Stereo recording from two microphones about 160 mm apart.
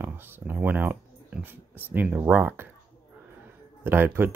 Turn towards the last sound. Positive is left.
turn(degrees=-15)  # may be behind; listen again after turning